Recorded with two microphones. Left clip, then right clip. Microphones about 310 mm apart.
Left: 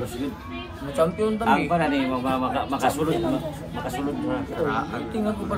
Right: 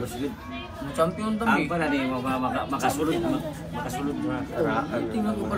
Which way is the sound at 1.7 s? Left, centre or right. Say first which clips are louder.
Left 3 dB; left.